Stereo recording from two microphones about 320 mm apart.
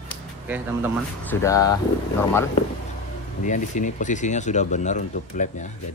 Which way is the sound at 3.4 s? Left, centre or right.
Left.